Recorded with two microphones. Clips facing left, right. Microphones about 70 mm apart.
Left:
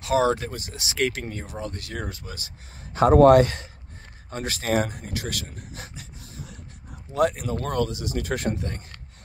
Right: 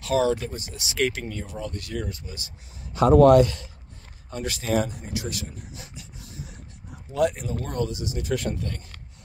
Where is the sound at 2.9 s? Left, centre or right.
Left.